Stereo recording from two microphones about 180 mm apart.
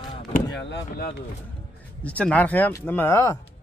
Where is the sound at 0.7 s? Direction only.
60° left (ahead or behind).